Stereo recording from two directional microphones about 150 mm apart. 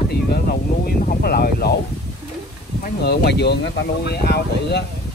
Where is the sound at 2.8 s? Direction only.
90° left.